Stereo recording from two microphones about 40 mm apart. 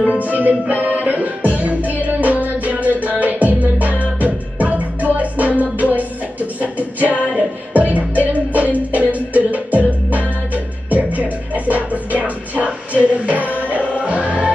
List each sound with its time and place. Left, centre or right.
0.0 s music: right
0.3 s music: right